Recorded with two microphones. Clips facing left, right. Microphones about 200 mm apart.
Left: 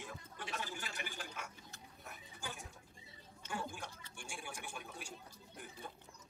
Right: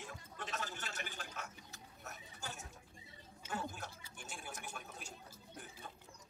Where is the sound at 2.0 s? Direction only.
45° right (ahead or behind).